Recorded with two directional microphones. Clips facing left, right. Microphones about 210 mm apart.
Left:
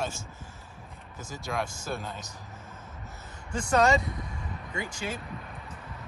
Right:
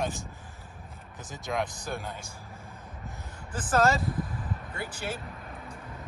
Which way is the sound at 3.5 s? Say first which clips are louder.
Left 1 dB; centre (ahead or behind).